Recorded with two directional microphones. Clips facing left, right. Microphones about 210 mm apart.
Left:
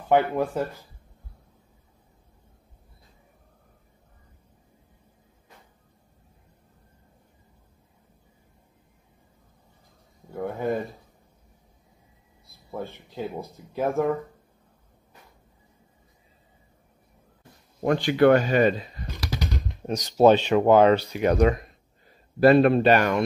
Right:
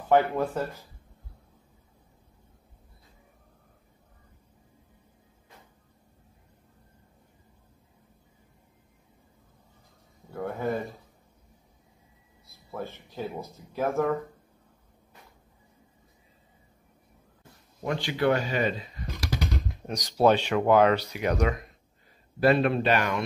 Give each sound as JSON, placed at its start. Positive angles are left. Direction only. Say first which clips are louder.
{"t": 0.1, "sound": "speech", "louder": "left 1 dB", "side_deg": 15}
{"t": 10.3, "sound": "speech", "louder": "left 2 dB", "side_deg": 15}
{"t": 12.4, "sound": "a sound", "louder": "left 2 dB", "side_deg": 15}
{"t": 13.7, "sound": "speech", "louder": "left 2 dB", "side_deg": 15}
{"t": 17.8, "sound": "speech", "louder": "left 7 dB", "side_deg": 55}
{"t": 19.9, "sound": "speech", "louder": "left 5 dB", "side_deg": 25}